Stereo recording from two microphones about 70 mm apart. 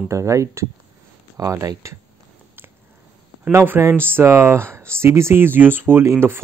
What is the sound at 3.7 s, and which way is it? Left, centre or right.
Speech, right.